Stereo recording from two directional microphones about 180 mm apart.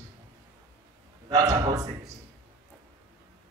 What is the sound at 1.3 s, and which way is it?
Speech, 20° right (ahead or behind).